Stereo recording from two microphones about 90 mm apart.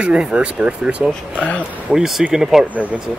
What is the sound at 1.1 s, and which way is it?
Speech, 15° left (ahead or behind).